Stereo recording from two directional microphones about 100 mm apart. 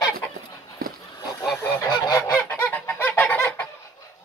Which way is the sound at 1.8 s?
45° left (ahead or behind).